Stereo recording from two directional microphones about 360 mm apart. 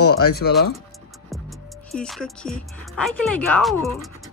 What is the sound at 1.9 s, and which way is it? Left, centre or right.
Speech, centre.